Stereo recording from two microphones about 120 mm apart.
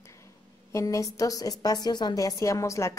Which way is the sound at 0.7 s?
25° left (ahead or behind).